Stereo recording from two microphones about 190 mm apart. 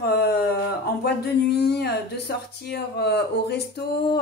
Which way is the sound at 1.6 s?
60° left (ahead or behind).